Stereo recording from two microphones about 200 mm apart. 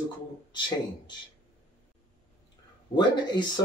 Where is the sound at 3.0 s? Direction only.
20° left (ahead or behind).